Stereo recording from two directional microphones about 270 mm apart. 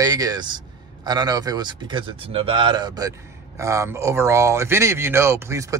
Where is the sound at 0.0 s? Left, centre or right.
Centre.